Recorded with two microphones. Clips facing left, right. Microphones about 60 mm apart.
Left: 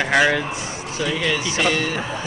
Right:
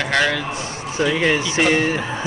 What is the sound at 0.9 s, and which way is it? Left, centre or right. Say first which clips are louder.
Speech: right 5 dB; right.